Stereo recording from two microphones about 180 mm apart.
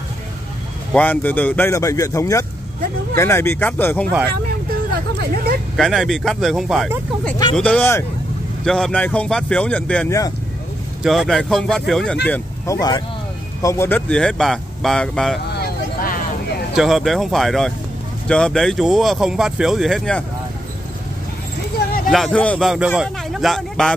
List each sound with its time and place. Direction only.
0.9 s speech: 10° left (ahead or behind)
5.8 s speech: centre (ahead or behind)
12.3 s speech: 20° left (ahead or behind); by 15.3 s 5° left (ahead or behind)
15.5 s vehicle: 55° left (ahead or behind)
16.7 s speech: centre (ahead or behind)
21.7 s a sound: 55° left (ahead or behind)
22.1 s speech: 5° left (ahead or behind)